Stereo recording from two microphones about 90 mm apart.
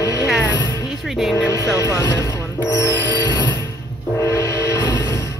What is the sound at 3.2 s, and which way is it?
Music, 50° left (ahead or behind).